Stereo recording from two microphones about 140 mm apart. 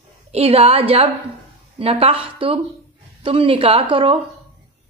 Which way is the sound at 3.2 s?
40° right (ahead or behind).